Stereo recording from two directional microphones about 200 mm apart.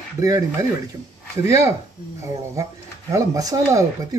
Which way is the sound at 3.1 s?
15° right (ahead or behind).